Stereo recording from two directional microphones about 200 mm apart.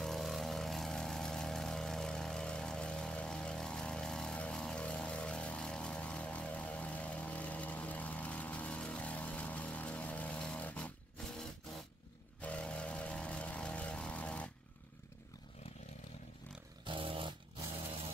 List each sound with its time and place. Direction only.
0.0 s vehicle: centre (ahead or behind)
12.4 s vehicle: 5° left (ahead or behind)
16.8 s dog: 25° right (ahead or behind)